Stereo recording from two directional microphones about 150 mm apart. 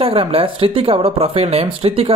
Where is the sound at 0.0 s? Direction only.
40° right (ahead or behind).